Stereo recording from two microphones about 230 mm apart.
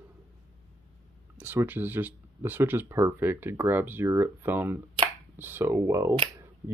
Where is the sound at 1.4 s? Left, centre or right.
Centre.